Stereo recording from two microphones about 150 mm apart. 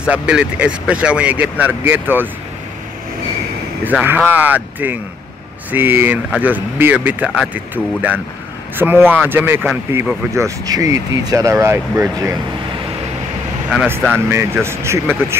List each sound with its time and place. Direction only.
0.0 s speech: 5° right (ahead or behind)
4.0 s speech: 15° right (ahead or behind)
13.7 s speech: 10° right (ahead or behind)